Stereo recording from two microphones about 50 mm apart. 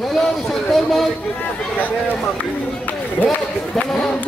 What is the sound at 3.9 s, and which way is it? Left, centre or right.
Speech, centre.